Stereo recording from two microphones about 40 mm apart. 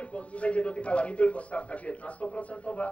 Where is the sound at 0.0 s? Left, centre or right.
Left.